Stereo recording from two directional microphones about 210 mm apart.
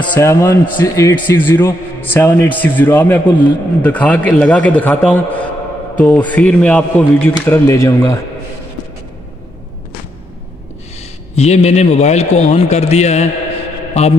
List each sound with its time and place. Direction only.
0.1 s a man's voice: 15° left (ahead or behind)
11.3 s a man's voice: 30° left (ahead or behind)